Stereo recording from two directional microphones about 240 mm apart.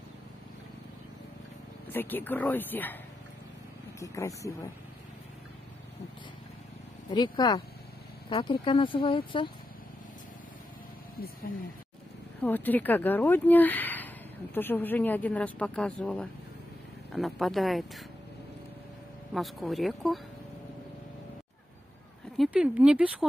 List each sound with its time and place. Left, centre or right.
1.9 s speech: centre
4.0 s speech: centre
7.1 s speech: centre
12.4 s speech: centre
19.3 s speech: centre
22.4 s speech: centre